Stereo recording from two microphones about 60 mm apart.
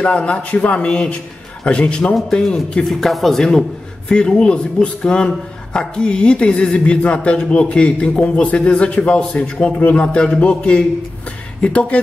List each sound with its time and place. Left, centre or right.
0.0 s a man's voice: centre